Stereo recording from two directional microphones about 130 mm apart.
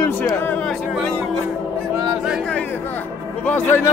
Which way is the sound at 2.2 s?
5° right (ahead or behind).